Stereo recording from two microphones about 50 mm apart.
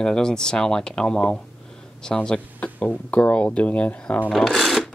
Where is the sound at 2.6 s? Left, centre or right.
Left.